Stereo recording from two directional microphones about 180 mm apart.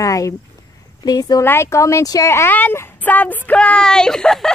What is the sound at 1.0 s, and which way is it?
Speech, 20° left (ahead or behind).